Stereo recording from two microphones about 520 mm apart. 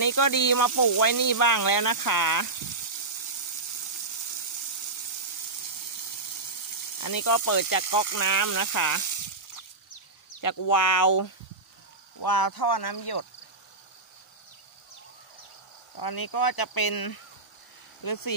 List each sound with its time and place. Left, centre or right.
0.0 s speech: left
7.0 s speech: left
10.4 s speech: left
16.0 s speech: left